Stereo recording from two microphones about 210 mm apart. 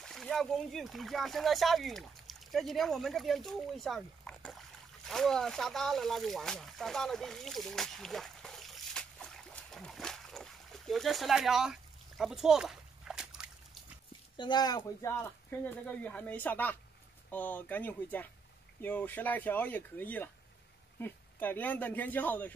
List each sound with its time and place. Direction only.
0.0 s speech: centre (ahead or behind)
5.0 s a sound: centre (ahead or behind)
14.3 s speech: 20° left (ahead or behind)